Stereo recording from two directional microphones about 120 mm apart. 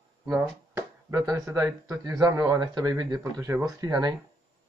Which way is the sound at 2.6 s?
35° right (ahead or behind).